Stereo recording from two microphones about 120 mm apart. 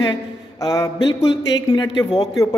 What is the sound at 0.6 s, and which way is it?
Speech, 30° left (ahead or behind).